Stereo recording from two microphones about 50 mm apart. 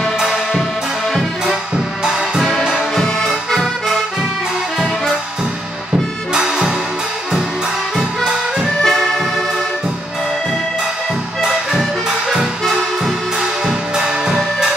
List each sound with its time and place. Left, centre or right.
3.0 s music: centre
6.3 s music: centre
8.2 s music: centre
8.8 s music: centre
13.7 s music: centre